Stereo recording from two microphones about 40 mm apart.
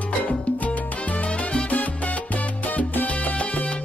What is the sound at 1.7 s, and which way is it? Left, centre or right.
Salsa music, left.